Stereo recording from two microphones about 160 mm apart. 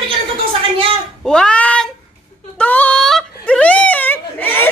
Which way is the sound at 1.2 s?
5° left (ahead or behind).